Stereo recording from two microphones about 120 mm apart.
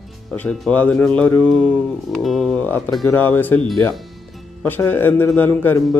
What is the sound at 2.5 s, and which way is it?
Mantra, 15° left (ahead or behind).